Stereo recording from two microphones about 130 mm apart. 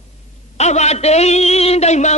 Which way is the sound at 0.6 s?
60° left (ahead or behind).